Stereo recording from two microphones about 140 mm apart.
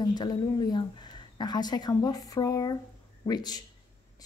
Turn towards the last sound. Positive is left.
turn(degrees=30)  # may be behind; listen again after turning